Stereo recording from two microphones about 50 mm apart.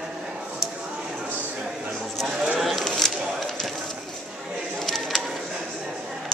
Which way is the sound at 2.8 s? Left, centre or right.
Centre.